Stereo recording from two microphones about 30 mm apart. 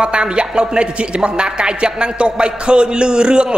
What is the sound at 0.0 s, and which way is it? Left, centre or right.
A man's voice, right.